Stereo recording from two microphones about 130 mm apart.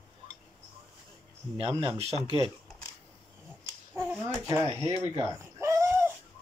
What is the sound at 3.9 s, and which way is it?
Speech, 15° right (ahead or behind).